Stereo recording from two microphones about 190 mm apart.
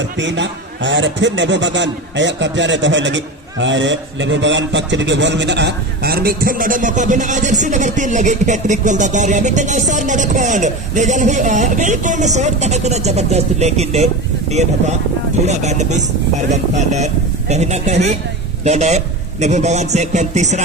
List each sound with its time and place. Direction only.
0.2 s a man's voice: 70° right (ahead or behind); by 20.6 s 40° right (ahead or behind)